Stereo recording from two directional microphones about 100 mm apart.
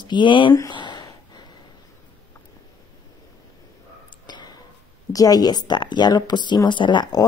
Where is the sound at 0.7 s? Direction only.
50° left (ahead or behind).